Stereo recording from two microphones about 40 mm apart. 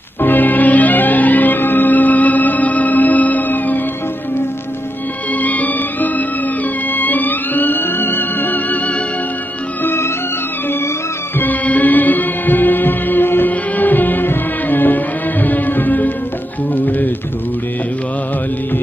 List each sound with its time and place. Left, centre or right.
0.2 s music: left
5.3 s music: left
9.8 s music: left
11.6 s music: left
13.5 s music: left